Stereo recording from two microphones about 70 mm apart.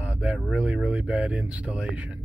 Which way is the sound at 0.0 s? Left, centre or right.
Centre.